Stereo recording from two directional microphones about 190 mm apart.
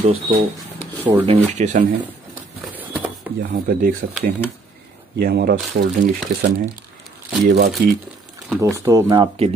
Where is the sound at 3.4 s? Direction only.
50° right (ahead or behind).